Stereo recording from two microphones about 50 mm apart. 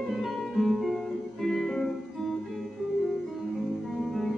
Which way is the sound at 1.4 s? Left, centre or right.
Centre.